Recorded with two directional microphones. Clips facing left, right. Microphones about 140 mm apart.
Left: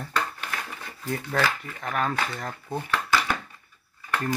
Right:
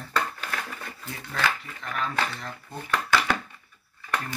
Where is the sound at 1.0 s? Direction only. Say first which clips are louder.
Left 4 dB; 50° left (ahead or behind).